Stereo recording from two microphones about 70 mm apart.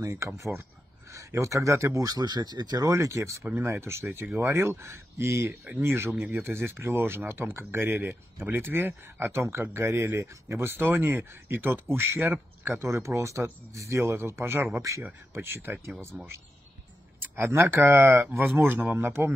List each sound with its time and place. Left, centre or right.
0.0 s speech: right
2.0 s speech: right
2.9 s speech: right
14.8 s speech: right
15.3 s speech: right
17.2 s speech: right